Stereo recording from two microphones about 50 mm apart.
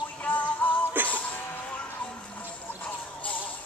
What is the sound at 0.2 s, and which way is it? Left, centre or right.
Music, left.